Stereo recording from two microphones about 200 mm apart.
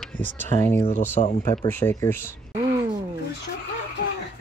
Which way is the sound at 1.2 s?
35° left (ahead or behind).